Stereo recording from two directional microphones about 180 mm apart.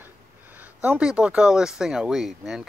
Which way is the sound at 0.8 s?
5° right (ahead or behind).